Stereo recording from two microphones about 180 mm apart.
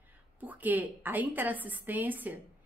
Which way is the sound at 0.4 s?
10° right (ahead or behind).